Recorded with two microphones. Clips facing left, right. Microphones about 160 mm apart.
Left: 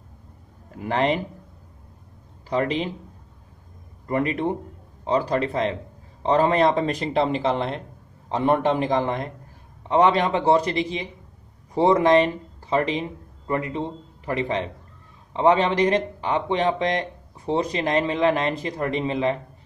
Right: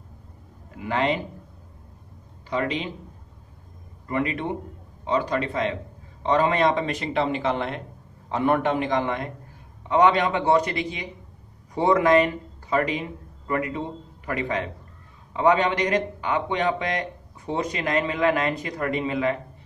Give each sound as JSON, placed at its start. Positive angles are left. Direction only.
{"t": 0.7, "sound": "speech", "side_deg": 35}
{"t": 2.5, "sound": "speech", "side_deg": 35}
{"t": 4.1, "sound": "a man's voice", "side_deg": 40}